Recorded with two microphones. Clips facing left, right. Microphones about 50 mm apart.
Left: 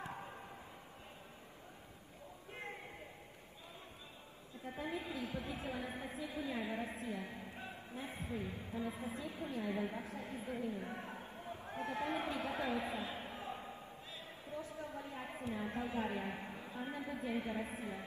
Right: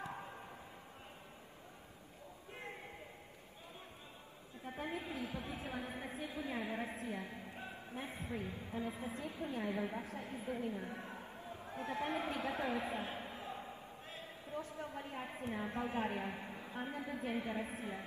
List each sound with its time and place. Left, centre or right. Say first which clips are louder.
2.5 s a sound: left 1 dB; centre
4.6 s a woman's voice: even; right
5.9 s music: even; right
10.9 s speech: left 1 dB; left
11.4 s a sound: left 1 dB; left
12.3 s music: even; right
13.2 s slam: even; left
14.1 s a sound: right 2 dB; right
15.4 s music: even; right
16.3 s a woman's voice: even; left
16.6 s a woman's voice: right 2 dB; right
17.1 s music: even; right